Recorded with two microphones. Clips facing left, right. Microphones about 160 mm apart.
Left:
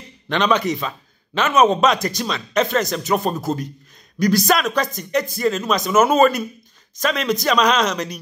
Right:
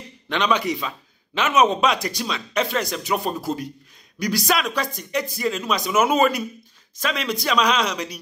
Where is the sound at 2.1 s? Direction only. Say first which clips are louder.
Left 4 dB; 10° right (ahead or behind).